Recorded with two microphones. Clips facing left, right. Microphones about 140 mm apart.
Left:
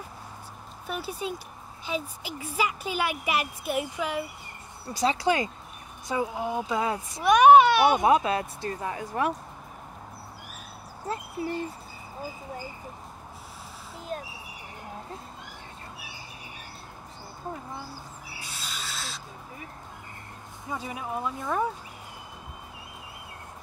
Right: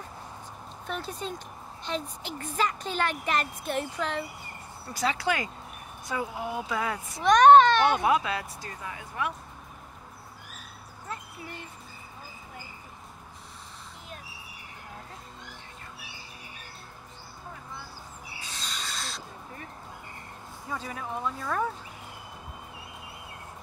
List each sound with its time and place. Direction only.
0.8 s speech: 10° left (ahead or behind)
4.9 s speech: 25° left (ahead or behind)
7.2 s a child's voice: 10° left (ahead or behind)
8.1 s speech: 30° left (ahead or behind)
11.1 s owl: 35° left (ahead or behind)
18.4 s owl: 10° left (ahead or behind)
20.7 s speech: 15° left (ahead or behind)